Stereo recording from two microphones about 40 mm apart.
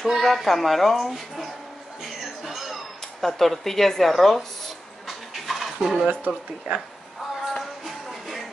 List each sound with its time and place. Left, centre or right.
0.2 s speech: centre
2.0 s music: centre
3.2 s speech: centre
5.0 s a sound: centre
6.0 s speech: right
7.5 s music: centre